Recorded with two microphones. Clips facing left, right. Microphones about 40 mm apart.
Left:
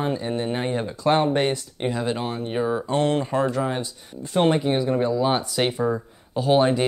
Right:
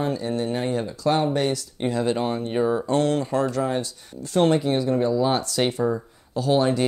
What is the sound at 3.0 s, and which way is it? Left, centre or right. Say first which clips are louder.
Speech: left 1 dB; left.